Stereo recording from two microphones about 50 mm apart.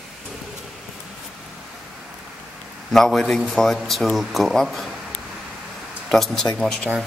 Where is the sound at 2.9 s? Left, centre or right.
Centre.